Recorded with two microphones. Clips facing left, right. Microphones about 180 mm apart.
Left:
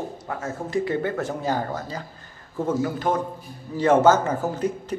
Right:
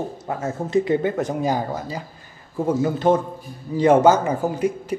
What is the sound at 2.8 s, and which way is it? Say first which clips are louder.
Speech: right 6 dB; 25° right (ahead or behind).